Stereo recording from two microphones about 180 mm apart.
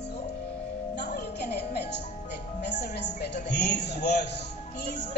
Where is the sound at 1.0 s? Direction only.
65° left (ahead or behind).